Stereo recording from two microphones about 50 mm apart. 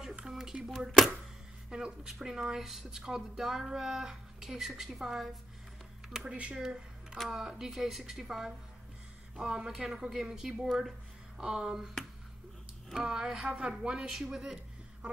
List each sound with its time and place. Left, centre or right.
0.2 s a sound: centre
0.7 s speech: centre
1.7 s speech: centre
6.3 s speech: right
6.6 s a sound: centre
7.2 s speech: centre
12.9 s speech: centre